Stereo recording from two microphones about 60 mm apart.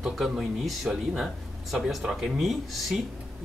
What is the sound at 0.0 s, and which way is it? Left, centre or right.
Speech, centre.